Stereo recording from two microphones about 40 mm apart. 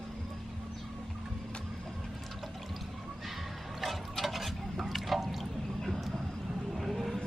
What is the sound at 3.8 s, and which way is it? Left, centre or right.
Water, centre.